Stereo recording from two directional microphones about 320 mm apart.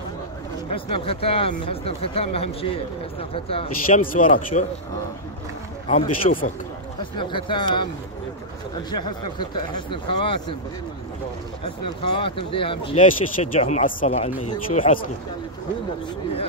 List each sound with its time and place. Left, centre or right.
0.7 s speech: centre
5.9 s speech: centre
8.9 s speech: centre
11.6 s speech: centre